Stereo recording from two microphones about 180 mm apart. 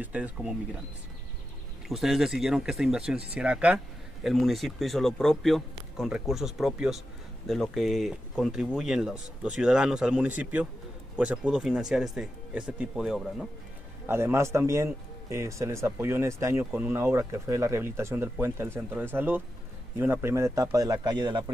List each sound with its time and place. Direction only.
0.0 s speech: 10° right (ahead or behind)
1.9 s speech: centre (ahead or behind)
14.0 s speech: 15° right (ahead or behind)